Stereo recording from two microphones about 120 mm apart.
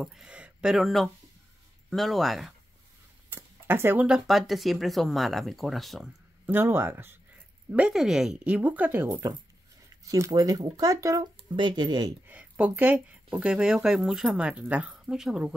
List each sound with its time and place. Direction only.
0.0 s speech: 5° right (ahead or behind)
3.3 s a sound: 20° right (ahead or behind)
4.1 s speech: centre (ahead or behind)
6.4 s speech: 20° right (ahead or behind)
7.7 s speech: 5° right (ahead or behind)
9.1 s speech: 30° right (ahead or behind)
11.5 s speech: 40° right (ahead or behind)
12.3 s speech: 10° right (ahead or behind)